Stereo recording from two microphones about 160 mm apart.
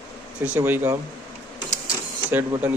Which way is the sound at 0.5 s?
15° right (ahead or behind).